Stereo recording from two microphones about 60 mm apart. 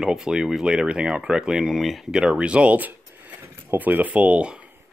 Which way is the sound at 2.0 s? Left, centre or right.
Centre.